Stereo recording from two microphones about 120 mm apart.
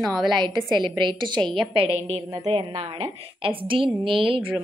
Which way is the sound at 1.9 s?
60° right (ahead or behind).